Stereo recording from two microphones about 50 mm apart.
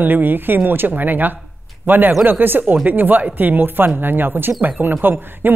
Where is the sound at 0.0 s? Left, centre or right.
Right.